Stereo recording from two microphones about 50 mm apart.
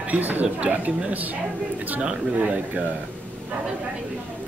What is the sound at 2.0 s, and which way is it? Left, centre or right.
Speech, right.